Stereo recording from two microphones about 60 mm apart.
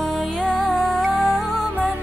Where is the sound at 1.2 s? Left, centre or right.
Left.